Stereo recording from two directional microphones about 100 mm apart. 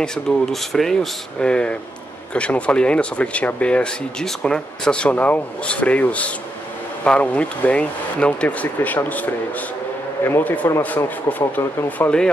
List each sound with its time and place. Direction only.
0.0 s speech: 5° left (ahead or behind)